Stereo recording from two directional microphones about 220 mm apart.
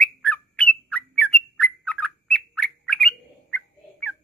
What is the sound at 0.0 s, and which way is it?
Bird, 5° left (ahead or behind).